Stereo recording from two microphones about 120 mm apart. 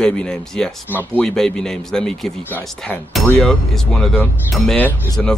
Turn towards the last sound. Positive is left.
turn(degrees=5)  # may be behind; listen again after turning